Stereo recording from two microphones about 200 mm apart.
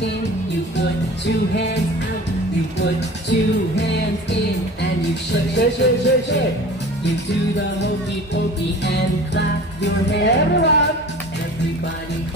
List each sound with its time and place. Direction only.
0.7 s music: 60° left (ahead or behind)
2.8 s music: 60° left (ahead or behind)
8.8 s speech: 60° left (ahead or behind)